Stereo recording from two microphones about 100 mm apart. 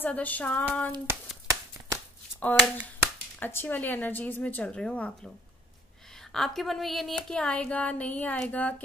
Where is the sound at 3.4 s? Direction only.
20° left (ahead or behind).